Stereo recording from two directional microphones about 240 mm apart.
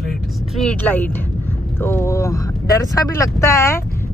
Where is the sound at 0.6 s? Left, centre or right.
Centre.